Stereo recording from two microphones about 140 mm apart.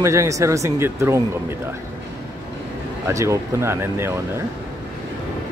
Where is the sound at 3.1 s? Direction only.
20° right (ahead or behind).